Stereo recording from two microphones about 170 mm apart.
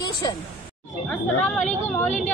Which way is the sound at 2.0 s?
45° left (ahead or behind).